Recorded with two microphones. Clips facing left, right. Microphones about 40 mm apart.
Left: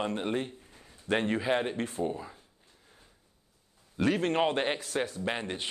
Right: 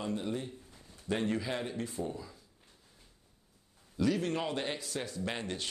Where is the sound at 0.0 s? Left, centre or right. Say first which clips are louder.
Left 5 dB; left.